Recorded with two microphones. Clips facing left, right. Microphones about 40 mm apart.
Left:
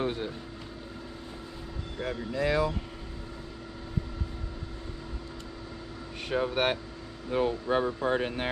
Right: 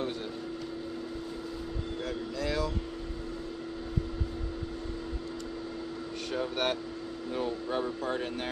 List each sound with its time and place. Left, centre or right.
0.0 s vehicle: left
2.0 s speech: left
6.3 s speech: left